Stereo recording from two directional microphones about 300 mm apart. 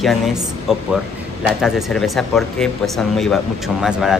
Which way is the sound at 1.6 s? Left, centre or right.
Centre.